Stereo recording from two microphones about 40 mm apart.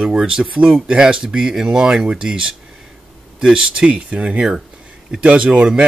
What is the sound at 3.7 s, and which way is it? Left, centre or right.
Speech, right.